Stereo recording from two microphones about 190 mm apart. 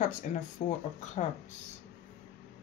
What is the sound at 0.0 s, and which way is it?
Speech, 40° left (ahead or behind).